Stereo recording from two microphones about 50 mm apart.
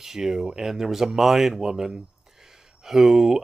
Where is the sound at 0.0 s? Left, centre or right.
Centre.